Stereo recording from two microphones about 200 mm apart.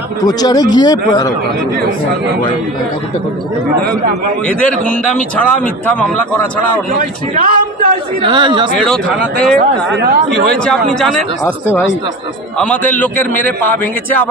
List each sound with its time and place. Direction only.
0.2 s speech: 20° left (ahead or behind)
4.5 s a man's voice: 5° left (ahead or behind)
6.9 s a man's voice: 45° right (ahead or behind)
8.2 s speech: 25° right (ahead or behind)
8.7 s a man's voice: 5° left (ahead or behind)
9.6 s a man's voice: 55° right (ahead or behind)
10.6 s a man's voice: 5° left (ahead or behind)